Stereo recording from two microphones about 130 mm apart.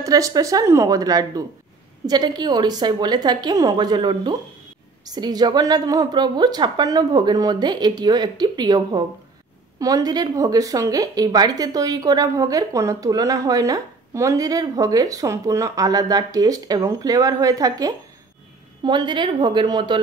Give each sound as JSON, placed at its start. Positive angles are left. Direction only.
{"t": 0.0, "sound": "a woman's voice", "side_deg": -25}